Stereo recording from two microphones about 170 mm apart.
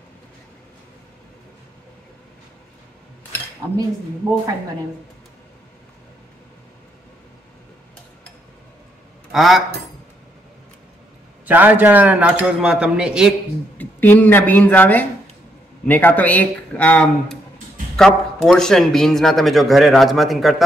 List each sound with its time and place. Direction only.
9.3 s speech: centre (ahead or behind)
11.4 s a man's voice: 10° right (ahead or behind)
13.7 s a man's voice: 10° left (ahead or behind)